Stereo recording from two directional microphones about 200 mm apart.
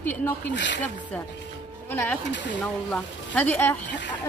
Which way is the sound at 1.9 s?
10° left (ahead or behind).